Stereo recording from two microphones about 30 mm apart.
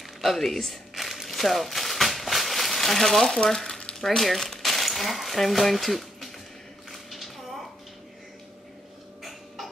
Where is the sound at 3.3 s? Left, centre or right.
Centre.